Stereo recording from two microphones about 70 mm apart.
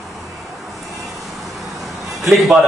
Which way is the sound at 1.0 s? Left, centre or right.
Centre.